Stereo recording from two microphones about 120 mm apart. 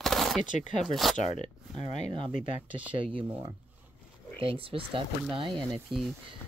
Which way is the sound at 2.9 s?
45° right (ahead or behind).